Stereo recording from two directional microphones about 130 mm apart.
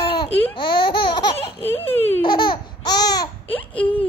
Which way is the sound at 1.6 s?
15° left (ahead or behind).